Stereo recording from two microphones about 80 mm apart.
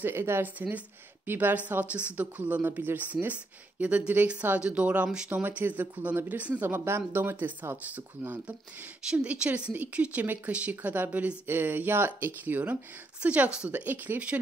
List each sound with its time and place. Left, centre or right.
0.0 s a woman's voice: right